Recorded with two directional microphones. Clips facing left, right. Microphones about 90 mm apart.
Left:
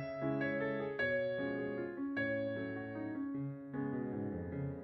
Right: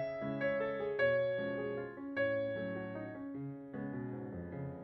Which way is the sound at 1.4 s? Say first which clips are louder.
Right 1 dB; 20° left (ahead or behind).